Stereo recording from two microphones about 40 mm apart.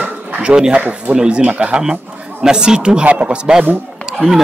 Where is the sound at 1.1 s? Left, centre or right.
Right.